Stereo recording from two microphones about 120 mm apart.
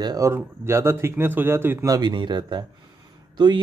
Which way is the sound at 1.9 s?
40° right (ahead or behind).